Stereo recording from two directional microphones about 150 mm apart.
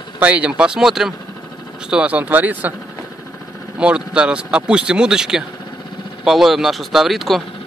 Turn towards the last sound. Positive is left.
turn(degrees=0)  # may be behind; listen again after turning